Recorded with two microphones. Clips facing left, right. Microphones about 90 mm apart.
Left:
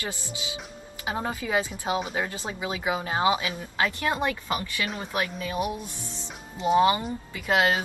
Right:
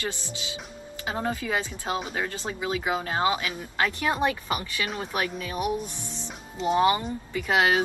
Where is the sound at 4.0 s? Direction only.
10° right (ahead or behind).